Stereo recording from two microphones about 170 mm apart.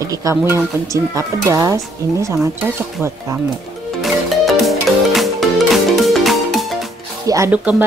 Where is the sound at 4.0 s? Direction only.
Centre (ahead or behind).